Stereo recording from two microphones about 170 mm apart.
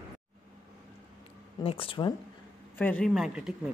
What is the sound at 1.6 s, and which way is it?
Speech, 35° left (ahead or behind).